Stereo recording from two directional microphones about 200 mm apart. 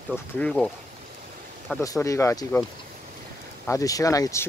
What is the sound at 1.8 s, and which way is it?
Speech, 15° left (ahead or behind).